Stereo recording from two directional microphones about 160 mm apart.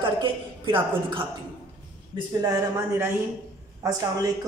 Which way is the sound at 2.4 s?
20° right (ahead or behind).